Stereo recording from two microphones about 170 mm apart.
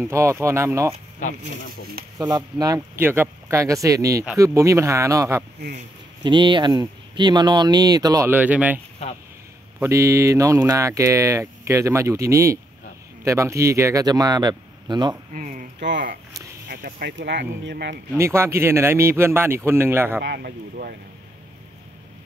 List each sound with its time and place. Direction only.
0.0 s speech: 15° right (ahead or behind)
1.2 s speech: 50° left (ahead or behind)
2.1 s speech: 25° right (ahead or behind)
8.3 s speech: 10° right (ahead or behind); by 15.1 s 25° right (ahead or behind)
15.3 s speech: 50° right (ahead or behind); by 17.9 s 85° right
18.1 s speech: 15° right (ahead or behind)
20.2 s speech: 75° right (ahead or behind)